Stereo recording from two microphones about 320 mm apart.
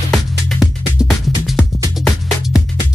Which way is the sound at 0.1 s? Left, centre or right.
Centre.